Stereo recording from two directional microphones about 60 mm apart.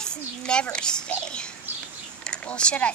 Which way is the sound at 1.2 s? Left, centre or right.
Centre.